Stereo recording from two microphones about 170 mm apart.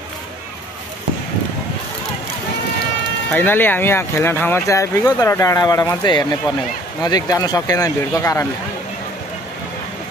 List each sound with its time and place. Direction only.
3.3 s speech: 10° left (ahead or behind)